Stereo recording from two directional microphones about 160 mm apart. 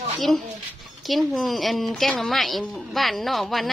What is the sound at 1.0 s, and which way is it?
A woman's voice, centre (ahead or behind).